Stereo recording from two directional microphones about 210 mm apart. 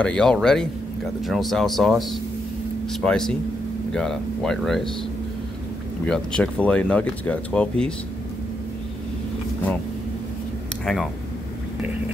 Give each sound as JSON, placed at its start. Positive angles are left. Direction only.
{"t": 0.0, "sound": "speech", "side_deg": 5}
{"t": 6.0, "sound": "speech", "side_deg": 5}